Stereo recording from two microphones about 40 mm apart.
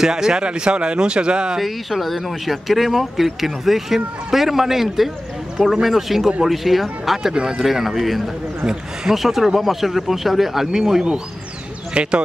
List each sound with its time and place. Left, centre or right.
0.0 s speech: centre
1.6 s speech: centre
11.9 s speech: right